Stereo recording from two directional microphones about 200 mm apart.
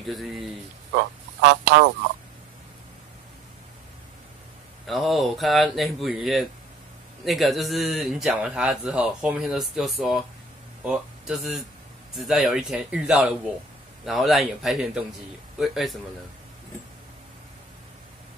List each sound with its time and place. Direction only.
0.0 s speech: centre (ahead or behind)
0.9 s speech: 60° right (ahead or behind)
4.8 s speech: centre (ahead or behind)